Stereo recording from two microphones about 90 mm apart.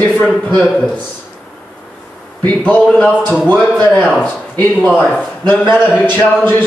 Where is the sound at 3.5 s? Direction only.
10° right (ahead or behind).